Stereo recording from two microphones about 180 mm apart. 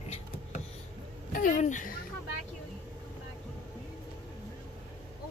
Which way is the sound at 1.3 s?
45° left (ahead or behind).